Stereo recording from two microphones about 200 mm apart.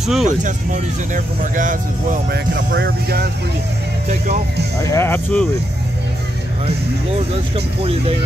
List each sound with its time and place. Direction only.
0.0 s speech: centre (ahead or behind)
0.4 s speech: 40° right (ahead or behind)
4.8 s speech: 10° left (ahead or behind)
7.5 s speech: 30° right (ahead or behind)